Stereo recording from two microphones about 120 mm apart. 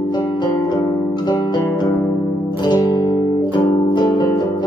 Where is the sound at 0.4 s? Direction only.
30° left (ahead or behind).